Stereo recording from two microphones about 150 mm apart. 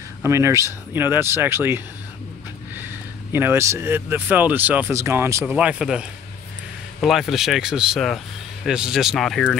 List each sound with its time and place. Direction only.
0.2 s speech: 20° right (ahead or behind)
3.3 s speech: 15° right (ahead or behind); by 9.6 s 5° left (ahead or behind)